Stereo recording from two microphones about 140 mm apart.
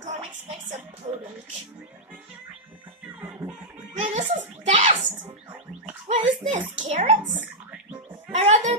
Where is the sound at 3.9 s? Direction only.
55° right (ahead or behind).